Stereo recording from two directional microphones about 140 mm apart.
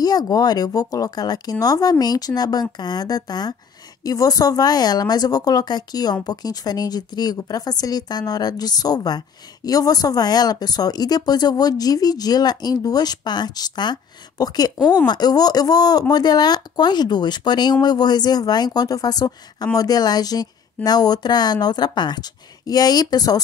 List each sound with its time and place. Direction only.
0.0 s speech: 30° left (ahead or behind)